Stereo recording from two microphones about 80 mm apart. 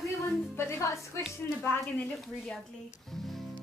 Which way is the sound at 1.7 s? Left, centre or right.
Left.